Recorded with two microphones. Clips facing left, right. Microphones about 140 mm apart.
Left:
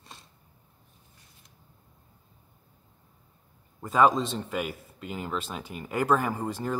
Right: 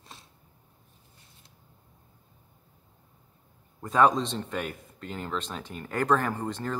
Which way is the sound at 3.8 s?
Centre (ahead or behind).